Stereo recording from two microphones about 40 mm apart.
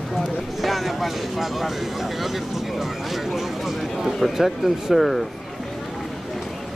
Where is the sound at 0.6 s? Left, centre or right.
Centre.